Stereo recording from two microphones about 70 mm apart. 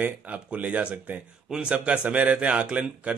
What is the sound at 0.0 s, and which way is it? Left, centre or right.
Speech, right.